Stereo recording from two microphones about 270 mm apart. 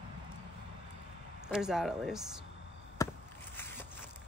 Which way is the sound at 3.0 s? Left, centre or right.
Centre.